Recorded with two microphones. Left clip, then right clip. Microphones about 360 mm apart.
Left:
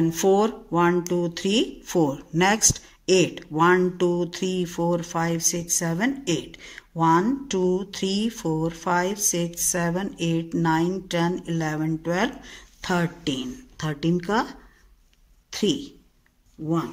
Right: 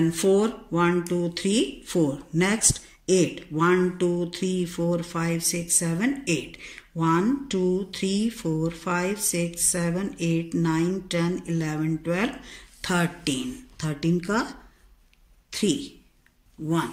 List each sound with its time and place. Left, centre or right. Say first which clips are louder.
0.0 s speech: left 2 dB; left